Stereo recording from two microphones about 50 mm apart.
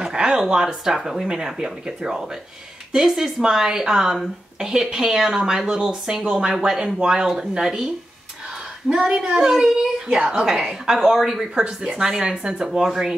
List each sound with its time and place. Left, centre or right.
0.0 s speech: centre
9.1 s a child's voice: right
9.4 s speech: centre